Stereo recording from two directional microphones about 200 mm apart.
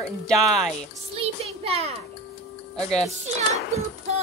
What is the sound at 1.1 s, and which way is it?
Child singing, 30° right (ahead or behind).